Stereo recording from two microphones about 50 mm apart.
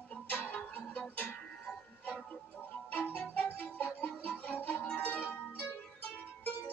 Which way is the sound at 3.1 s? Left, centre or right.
Left.